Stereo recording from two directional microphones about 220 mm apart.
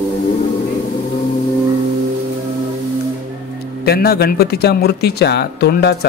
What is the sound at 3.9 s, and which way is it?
Speech, 45° left (ahead or behind).